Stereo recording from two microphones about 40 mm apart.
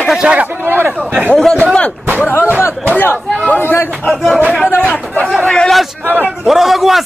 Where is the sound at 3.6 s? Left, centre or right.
Left.